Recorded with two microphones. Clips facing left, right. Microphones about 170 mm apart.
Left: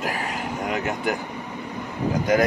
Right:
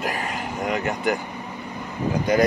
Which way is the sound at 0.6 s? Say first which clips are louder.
Right 2 dB; 5° left (ahead or behind).